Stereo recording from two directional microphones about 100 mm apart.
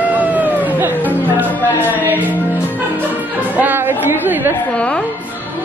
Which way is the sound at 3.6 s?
20° right (ahead or behind).